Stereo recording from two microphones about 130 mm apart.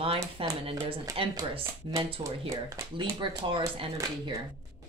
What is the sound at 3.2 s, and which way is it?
Speech, 40° right (ahead or behind).